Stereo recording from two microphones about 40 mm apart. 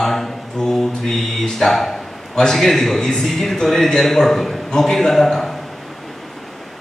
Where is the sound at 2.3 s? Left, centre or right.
Centre.